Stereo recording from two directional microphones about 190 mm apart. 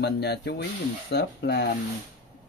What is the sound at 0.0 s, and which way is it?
Speech, 60° left (ahead or behind).